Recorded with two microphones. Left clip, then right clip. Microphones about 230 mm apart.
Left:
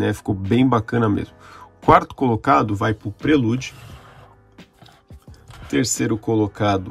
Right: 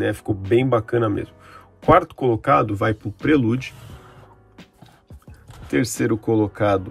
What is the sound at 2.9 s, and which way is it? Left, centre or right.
Speech, centre.